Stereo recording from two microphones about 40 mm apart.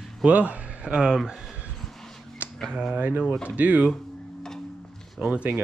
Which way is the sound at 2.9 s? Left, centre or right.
Right.